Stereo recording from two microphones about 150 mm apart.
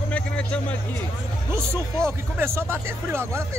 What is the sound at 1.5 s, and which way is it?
Speech, 15° right (ahead or behind).